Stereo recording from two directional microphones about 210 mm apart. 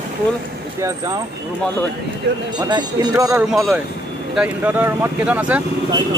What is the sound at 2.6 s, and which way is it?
Speech, 20° right (ahead or behind).